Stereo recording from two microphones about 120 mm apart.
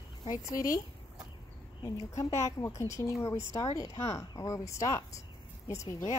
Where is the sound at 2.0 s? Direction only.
25° left (ahead or behind).